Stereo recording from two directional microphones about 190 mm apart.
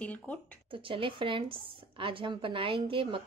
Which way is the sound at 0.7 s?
30° right (ahead or behind).